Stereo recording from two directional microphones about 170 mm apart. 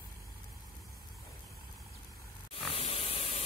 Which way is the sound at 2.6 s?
35° left (ahead or behind).